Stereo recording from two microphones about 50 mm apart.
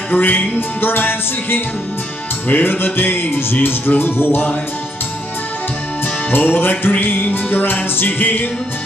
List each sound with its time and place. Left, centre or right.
0.1 s music: left
0.6 s music: left
6.3 s music: left